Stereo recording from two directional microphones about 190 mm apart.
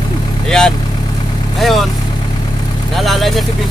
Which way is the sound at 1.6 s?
Centre (ahead or behind).